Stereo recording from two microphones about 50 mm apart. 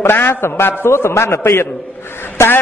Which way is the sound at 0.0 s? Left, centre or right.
Left.